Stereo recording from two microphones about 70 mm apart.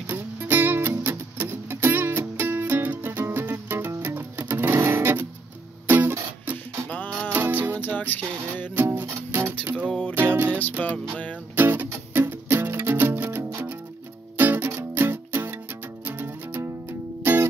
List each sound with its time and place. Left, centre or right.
0.1 s music: right
7.3 s music: right
8.0 s music: left
8.7 s music: right
9.8 s music: centre
10.3 s music: right
10.8 s music: centre
11.5 s music: right
13.4 s music: right
14.3 s music: right